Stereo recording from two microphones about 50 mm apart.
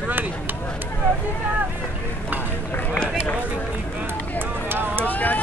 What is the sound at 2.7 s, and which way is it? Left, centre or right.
Run, left.